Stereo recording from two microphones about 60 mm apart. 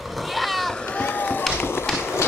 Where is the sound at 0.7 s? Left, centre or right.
Left.